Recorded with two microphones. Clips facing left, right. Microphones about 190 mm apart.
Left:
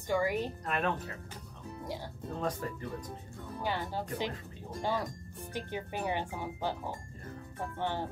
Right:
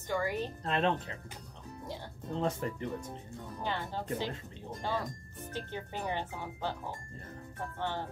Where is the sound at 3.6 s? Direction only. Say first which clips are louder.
Left 2 dB; 10° left (ahead or behind).